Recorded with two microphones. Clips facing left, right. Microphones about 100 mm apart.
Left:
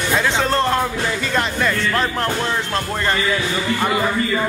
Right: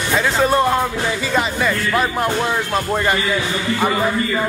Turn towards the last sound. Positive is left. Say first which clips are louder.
# right 3 dB
turn(degrees=-15)  # may be behind; listen again after turning